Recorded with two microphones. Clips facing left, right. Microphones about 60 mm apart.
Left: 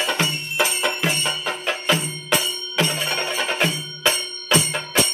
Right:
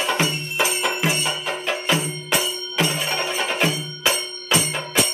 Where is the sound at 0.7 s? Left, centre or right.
Centre.